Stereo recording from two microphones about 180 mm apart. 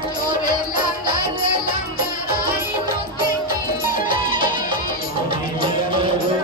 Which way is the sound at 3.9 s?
50° left (ahead or behind).